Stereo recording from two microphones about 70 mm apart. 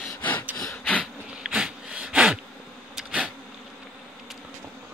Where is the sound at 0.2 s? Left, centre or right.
Left.